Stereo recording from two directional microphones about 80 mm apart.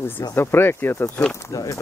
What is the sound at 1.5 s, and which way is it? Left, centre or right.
Speech, left.